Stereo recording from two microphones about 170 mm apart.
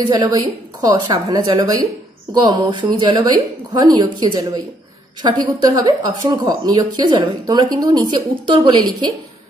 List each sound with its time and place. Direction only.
0.1 s a woman's voice: 25° right (ahead or behind)